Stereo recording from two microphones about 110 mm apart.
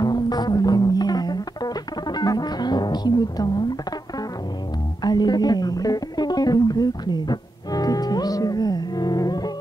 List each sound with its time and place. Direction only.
0.0 s music: 40° left (ahead or behind)
5.0 s music: 40° left (ahead or behind)